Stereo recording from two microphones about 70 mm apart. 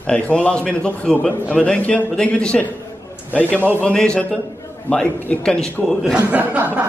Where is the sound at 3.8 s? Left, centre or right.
Centre.